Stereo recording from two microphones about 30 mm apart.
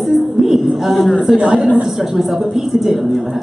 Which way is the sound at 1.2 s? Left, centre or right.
Right.